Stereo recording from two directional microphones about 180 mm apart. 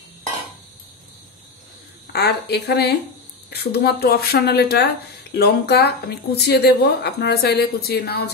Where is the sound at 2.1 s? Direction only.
65° left (ahead or behind).